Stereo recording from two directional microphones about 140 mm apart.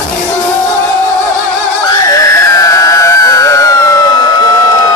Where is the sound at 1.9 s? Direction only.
25° left (ahead or behind).